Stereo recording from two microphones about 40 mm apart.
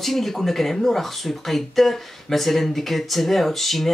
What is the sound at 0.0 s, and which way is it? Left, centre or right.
Speech, centre.